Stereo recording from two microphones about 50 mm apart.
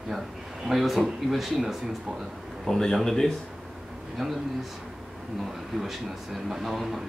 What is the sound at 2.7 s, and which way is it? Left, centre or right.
Speech, centre.